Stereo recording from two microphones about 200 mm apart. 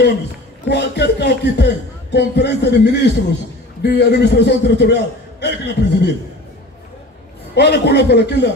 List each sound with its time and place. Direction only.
0.7 s speech: 55° left (ahead or behind)
7.5 s speech: 55° left (ahead or behind)